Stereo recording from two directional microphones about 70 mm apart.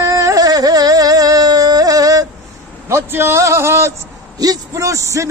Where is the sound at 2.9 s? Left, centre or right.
Right.